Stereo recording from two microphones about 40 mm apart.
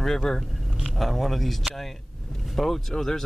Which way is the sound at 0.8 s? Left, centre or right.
Centre.